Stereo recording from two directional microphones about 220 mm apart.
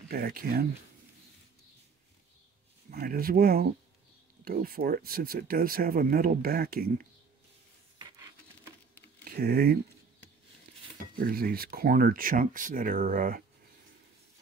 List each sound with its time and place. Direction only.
0.1 s speech: 45° right (ahead or behind)
2.9 s speech: 40° right (ahead or behind)
9.4 s speech: 45° right (ahead or behind)
11.1 s speech: 45° right (ahead or behind)